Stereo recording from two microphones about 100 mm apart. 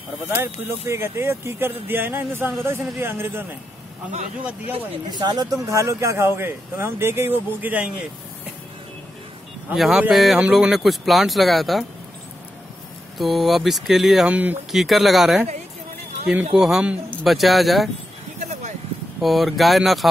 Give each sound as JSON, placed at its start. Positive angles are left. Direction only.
{"t": 0.3, "sound": "speech", "side_deg": -25}
{"t": 5.1, "sound": "speech", "side_deg": -45}
{"t": 9.8, "sound": "speech", "side_deg": -5}
{"t": 13.2, "sound": "speech", "side_deg": 0}
{"t": 14.3, "sound": "a man's voice", "side_deg": -15}
{"t": 14.7, "sound": "speech", "side_deg": 0}
{"t": 16.5, "sound": "a man's voice", "side_deg": -5}
{"t": 17.2, "sound": "speech", "side_deg": 0}
{"t": 19.2, "sound": "speech", "side_deg": 0}